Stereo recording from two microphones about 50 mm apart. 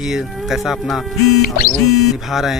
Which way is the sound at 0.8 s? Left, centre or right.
Centre.